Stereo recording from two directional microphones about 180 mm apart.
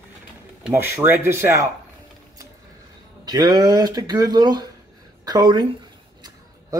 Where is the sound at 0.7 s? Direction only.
10° right (ahead or behind).